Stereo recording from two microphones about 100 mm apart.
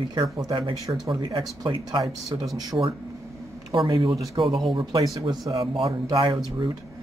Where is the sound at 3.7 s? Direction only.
55° right (ahead or behind).